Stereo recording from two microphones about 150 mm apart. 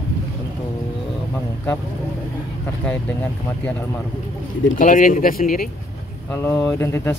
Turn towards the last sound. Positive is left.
turn(degrees=15)  # may be behind; listen again after turning